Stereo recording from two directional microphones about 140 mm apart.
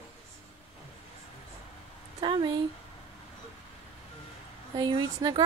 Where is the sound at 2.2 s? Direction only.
30° right (ahead or behind).